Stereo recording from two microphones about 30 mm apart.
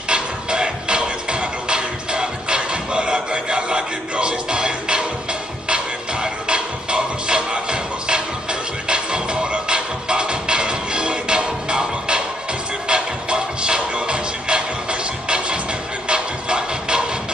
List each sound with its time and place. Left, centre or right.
0.1 s music: right